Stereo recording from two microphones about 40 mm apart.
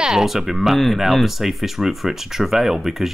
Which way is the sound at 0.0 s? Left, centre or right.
Centre.